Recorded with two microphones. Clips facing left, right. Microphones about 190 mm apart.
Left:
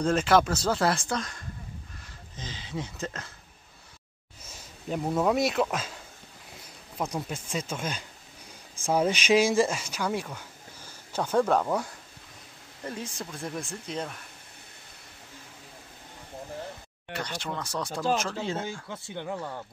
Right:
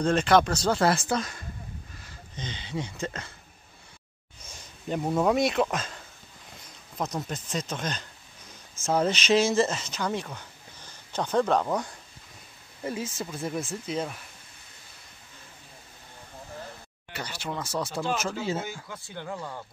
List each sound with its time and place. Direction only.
0.0 s speech: 5° left (ahead or behind)
4.4 s speech: 5° left (ahead or behind)
7.0 s speech: 10° left (ahead or behind)
17.1 s speech: 5° right (ahead or behind)
18.9 s speech: 20° left (ahead or behind)